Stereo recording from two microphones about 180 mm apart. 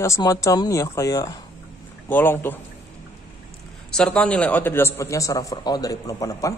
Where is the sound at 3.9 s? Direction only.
5° left (ahead or behind).